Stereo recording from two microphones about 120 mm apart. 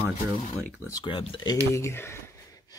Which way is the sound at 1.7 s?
20° left (ahead or behind).